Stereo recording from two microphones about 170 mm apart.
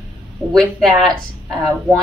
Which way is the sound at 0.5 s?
Centre (ahead or behind).